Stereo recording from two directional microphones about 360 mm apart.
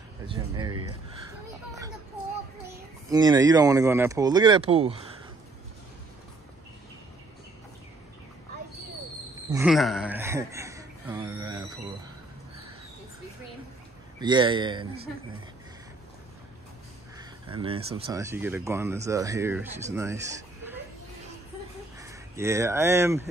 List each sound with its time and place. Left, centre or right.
0.7 s speech: right
3.1 s speech: centre
9.5 s a sound: centre
14.2 s speech: centre
17.2 s a sound: centre
17.8 s speech: centre
21.9 s speech: centre